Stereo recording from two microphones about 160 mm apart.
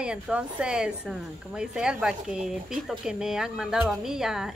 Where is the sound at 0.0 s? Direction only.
5° right (ahead or behind).